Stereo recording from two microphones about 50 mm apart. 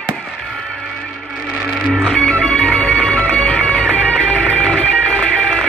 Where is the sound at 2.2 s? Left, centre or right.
Centre.